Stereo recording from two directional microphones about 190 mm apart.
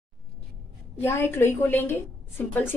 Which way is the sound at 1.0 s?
10° left (ahead or behind).